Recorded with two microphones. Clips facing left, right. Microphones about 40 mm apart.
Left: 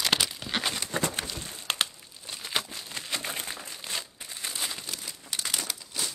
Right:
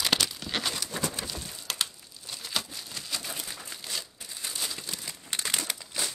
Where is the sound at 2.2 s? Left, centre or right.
Left.